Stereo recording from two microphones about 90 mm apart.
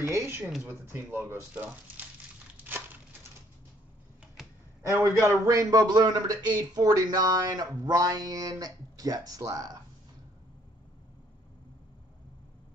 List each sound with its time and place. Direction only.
0.0 s speech: 35° right (ahead or behind)
4.9 s speech: 30° right (ahead or behind)
5.5 s a man's voice: 40° right (ahead or behind)